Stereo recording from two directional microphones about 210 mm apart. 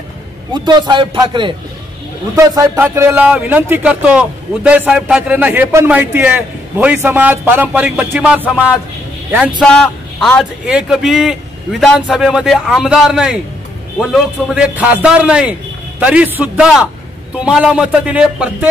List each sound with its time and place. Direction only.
0.5 s a man's voice: 20° right (ahead or behind); by 13.4 s 5° right (ahead or behind)
14.5 s a man's voice: 5° right (ahead or behind)